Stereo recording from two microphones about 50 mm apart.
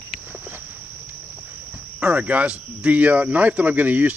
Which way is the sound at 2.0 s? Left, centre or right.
Right.